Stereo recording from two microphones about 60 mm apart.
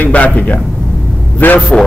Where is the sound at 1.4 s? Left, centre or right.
Left.